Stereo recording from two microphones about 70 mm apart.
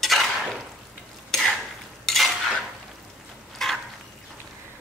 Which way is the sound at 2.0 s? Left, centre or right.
Centre.